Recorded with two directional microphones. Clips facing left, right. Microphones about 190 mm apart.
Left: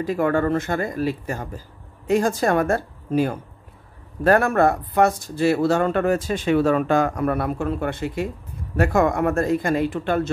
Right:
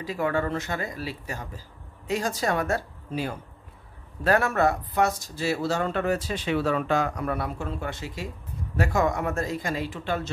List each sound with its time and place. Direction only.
0.0 s speech: 50° left (ahead or behind)